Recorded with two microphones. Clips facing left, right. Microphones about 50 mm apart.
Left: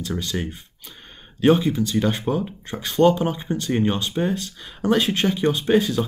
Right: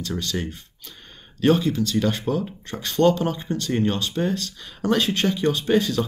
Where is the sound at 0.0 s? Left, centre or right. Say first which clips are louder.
Left 1 dB; centre.